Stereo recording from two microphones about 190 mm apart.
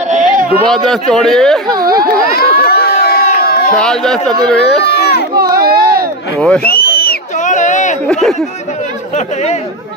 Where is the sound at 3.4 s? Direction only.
55° left (ahead or behind).